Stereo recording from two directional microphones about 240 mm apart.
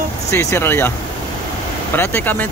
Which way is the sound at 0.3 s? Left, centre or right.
Centre.